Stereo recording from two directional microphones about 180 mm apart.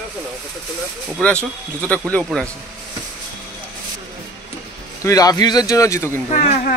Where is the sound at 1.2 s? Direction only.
5° left (ahead or behind).